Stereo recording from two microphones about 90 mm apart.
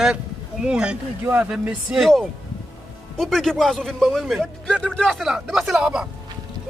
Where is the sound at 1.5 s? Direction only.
10° right (ahead or behind).